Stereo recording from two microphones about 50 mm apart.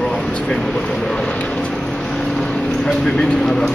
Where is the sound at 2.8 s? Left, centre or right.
Centre.